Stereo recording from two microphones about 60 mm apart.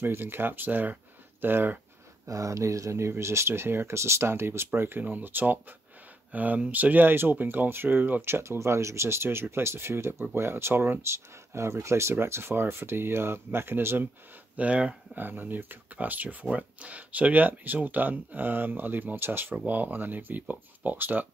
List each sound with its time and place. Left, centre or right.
0.0 s speech: right
2.2 s speech: right
14.6 s speech: right
15.1 s speech: right